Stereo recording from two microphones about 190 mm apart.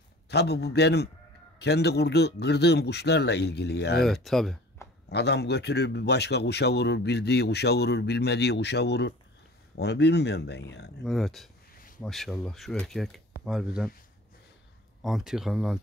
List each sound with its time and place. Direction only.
0.3 s speech: 60° left (ahead or behind)
4.0 s speech: centre (ahead or behind)
4.8 s a sound: 15° left (ahead or behind)
5.1 s speech: 60° left (ahead or behind)
11.1 s speech: centre (ahead or behind)
15.0 s speech: centre (ahead or behind)